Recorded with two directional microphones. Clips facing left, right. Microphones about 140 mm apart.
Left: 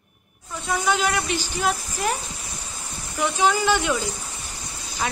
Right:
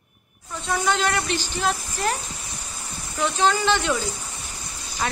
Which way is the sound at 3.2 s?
10° left (ahead or behind).